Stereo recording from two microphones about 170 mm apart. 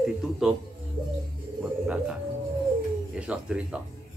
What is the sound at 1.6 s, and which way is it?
Music, 5° right (ahead or behind).